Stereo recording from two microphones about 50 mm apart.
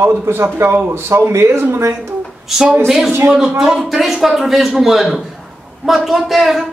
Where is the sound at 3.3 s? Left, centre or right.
Centre.